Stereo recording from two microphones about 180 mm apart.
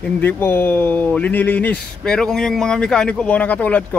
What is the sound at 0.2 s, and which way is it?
Speech, 10° left (ahead or behind).